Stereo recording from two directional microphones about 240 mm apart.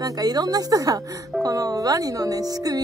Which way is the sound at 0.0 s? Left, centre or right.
Centre.